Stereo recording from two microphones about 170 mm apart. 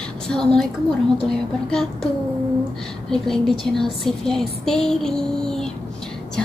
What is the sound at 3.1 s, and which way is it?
Speech, centre (ahead or behind).